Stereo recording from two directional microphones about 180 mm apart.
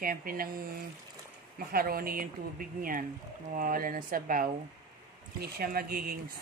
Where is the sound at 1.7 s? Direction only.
55° right (ahead or behind).